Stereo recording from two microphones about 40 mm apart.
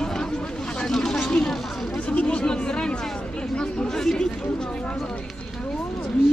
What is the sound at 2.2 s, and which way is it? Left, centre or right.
Chatter, left.